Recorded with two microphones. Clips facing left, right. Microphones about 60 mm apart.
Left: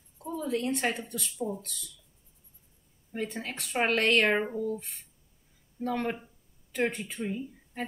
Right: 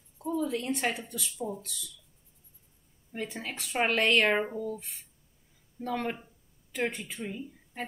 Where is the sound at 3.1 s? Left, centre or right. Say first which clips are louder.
Left 2 dB; centre.